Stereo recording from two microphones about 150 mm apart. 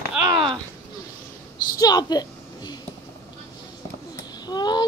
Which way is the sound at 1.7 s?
25° left (ahead or behind).